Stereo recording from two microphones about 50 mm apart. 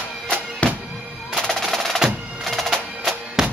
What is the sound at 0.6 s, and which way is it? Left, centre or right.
Bagpipes, left.